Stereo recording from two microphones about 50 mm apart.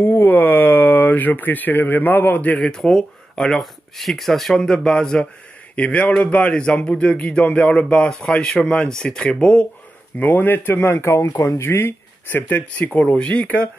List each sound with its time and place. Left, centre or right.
0.0 s speech: left
2.8 s speech: centre
4.6 s speech: centre
5.8 s speech: left; by 9.3 s centre
9.3 s speech: left
10.1 s speech: left
11.7 s speech: left